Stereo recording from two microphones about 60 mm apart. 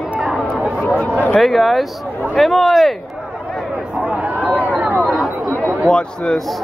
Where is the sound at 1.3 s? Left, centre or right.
Centre.